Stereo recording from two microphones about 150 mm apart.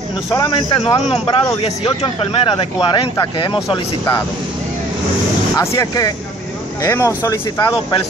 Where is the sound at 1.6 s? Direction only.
40° left (ahead or behind).